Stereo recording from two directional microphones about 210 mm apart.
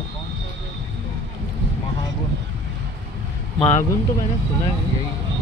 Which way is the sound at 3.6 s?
35° left (ahead or behind).